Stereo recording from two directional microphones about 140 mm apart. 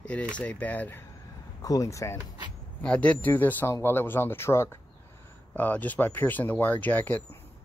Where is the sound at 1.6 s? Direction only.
25° left (ahead or behind).